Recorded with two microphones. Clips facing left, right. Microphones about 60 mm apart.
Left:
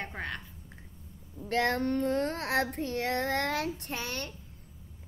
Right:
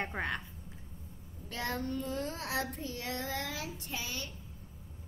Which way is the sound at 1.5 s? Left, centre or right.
Left.